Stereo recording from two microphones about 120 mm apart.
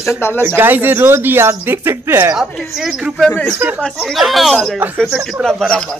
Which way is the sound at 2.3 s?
Centre (ahead or behind).